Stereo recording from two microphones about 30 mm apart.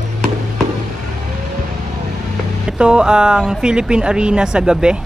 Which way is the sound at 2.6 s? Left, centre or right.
Right.